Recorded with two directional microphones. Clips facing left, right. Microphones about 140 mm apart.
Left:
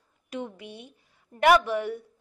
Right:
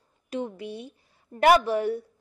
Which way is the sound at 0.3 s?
35° right (ahead or behind).